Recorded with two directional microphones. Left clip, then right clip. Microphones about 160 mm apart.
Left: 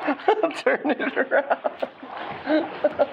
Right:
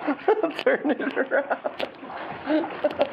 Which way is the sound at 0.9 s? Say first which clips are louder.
Left 2 dB; 20° left (ahead or behind).